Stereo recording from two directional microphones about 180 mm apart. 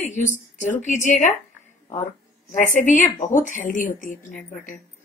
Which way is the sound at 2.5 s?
45° left (ahead or behind).